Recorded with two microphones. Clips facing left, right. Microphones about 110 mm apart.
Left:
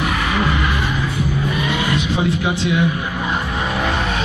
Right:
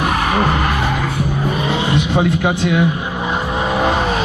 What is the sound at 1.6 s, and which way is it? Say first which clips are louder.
Vehicle: right 2 dB; 30° right (ahead or behind).